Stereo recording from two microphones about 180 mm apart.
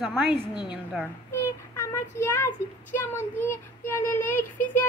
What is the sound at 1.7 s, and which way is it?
Child singing, 15° left (ahead or behind).